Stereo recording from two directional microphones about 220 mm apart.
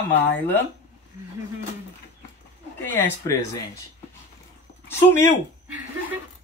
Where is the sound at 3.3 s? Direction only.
15° left (ahead or behind).